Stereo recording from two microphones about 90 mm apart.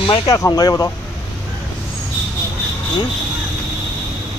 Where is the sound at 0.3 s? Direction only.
35° left (ahead or behind).